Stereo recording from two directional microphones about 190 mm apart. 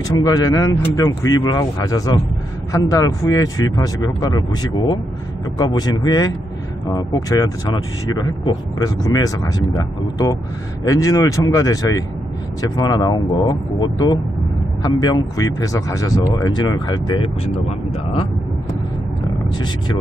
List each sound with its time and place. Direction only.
0.2 s speech: 20° left (ahead or behind)
5.6 s speech: 20° left (ahead or behind)